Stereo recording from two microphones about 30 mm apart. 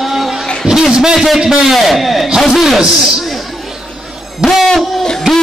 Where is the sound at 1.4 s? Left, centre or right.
Centre.